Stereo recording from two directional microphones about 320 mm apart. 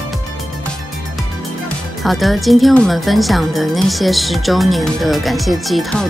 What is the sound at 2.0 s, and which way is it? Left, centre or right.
Speech, centre.